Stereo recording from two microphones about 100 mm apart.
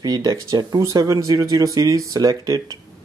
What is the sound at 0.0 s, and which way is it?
Speech, 40° right (ahead or behind).